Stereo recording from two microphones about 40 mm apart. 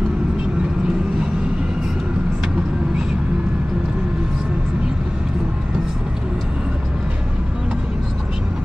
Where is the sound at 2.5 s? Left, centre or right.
Right.